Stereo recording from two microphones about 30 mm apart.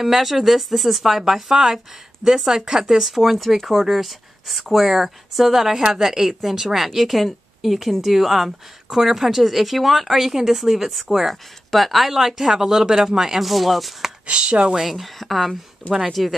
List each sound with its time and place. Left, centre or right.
0.0 s speech: centre
1.2 s speech: centre
3.6 s a woman's voice: centre
12.1 s speech: centre
13.5 s speech: centre
14.3 s speech: right
14.9 s speech: centre